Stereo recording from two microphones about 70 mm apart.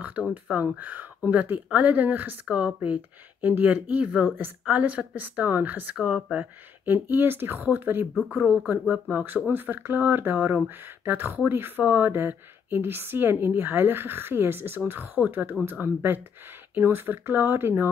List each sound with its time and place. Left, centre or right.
0.3 s speech: right
8.8 s speech: centre
9.1 s speech: right